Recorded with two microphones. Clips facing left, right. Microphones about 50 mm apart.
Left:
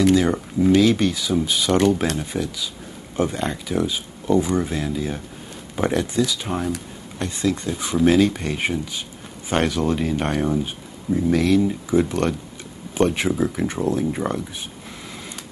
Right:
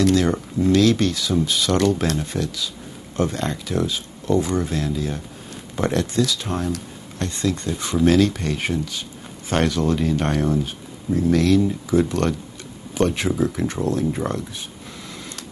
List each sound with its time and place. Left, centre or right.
0.0 s speech: centre